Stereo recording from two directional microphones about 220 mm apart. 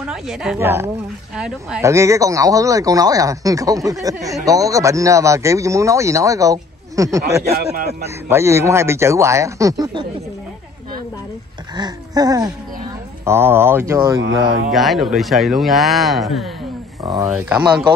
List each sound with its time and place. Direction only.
0.0 s a woman's voice: 5° right (ahead or behind)
1.9 s speech: 15° right (ahead or behind)
7.5 s a man's voice: 45° right (ahead or behind)
8.0 s speech: 10° right (ahead or behind)
11.7 s speech: 20° right (ahead or behind)
14.7 s speech: centre (ahead or behind)
17.0 s speech: 20° right (ahead or behind)
17.5 s speech: 5° right (ahead or behind)